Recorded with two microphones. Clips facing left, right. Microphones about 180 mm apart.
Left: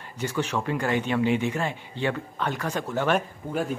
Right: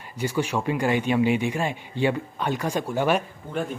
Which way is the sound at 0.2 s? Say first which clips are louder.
Right 2 dB; 10° right (ahead or behind).